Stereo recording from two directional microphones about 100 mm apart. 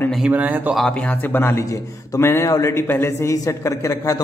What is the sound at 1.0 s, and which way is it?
A man's voice, 20° left (ahead or behind).